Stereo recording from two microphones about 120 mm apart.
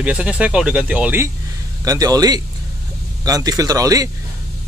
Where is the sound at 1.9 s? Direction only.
30° right (ahead or behind).